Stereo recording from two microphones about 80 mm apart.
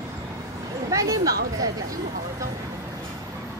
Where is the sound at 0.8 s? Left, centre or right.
Right.